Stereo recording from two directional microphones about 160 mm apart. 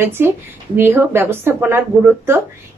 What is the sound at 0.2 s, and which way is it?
Speech, 15° right (ahead or behind).